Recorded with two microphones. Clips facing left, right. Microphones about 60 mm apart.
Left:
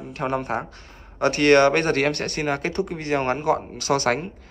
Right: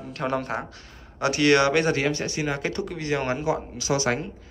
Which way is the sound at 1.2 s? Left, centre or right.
Left.